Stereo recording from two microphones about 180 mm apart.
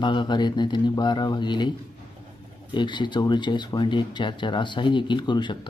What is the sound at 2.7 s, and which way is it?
Speech, 25° left (ahead or behind).